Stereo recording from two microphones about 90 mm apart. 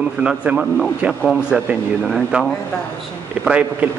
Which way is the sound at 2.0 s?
5° right (ahead or behind).